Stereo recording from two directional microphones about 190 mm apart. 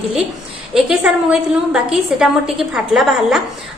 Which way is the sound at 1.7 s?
5° right (ahead or behind).